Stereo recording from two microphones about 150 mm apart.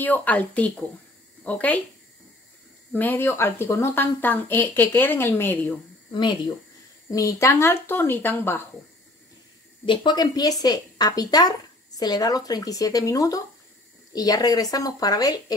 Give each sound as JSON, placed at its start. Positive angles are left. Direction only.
{"t": 0.0, "sound": "a woman's voice", "side_deg": 10}
{"t": 2.9, "sound": "a woman's voice", "side_deg": 15}
{"t": 6.1, "sound": "a woman's voice", "side_deg": 30}
{"t": 9.8, "sound": "a woman's voice", "side_deg": 30}